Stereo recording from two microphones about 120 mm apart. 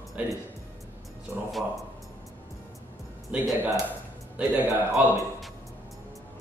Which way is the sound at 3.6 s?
15° right (ahead or behind).